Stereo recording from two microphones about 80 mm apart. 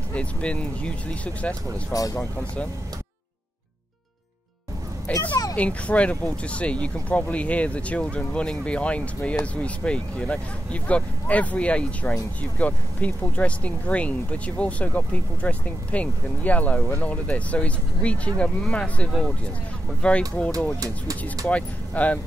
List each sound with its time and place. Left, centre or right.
0.1 s speech: centre
1.9 s speech: left
5.3 s a sound: left
5.6 s speech: centre